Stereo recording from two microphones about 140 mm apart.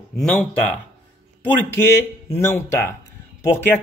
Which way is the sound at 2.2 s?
20° left (ahead or behind).